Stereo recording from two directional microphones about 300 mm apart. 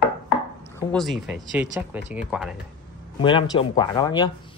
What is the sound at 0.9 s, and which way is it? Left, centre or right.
Speech, centre.